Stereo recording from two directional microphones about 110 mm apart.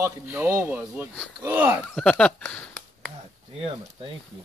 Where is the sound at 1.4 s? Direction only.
20° right (ahead or behind).